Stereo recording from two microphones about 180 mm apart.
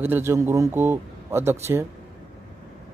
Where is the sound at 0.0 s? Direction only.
15° right (ahead or behind).